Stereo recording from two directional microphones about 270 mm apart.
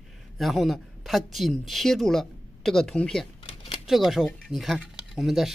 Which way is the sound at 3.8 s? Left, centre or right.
Centre.